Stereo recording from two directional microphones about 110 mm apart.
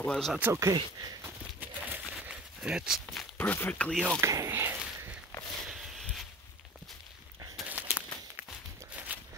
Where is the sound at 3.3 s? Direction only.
15° left (ahead or behind).